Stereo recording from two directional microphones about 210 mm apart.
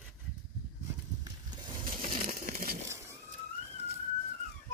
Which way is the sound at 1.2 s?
20° right (ahead or behind).